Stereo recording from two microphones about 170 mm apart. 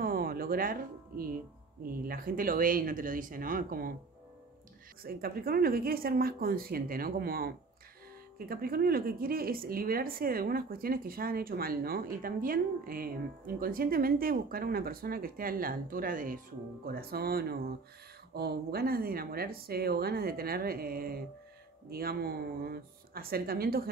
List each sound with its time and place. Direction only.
0.0 s music: 60° right (ahead or behind)
1.8 s speech: 60° right (ahead or behind)
5.0 s speech: 60° right (ahead or behind)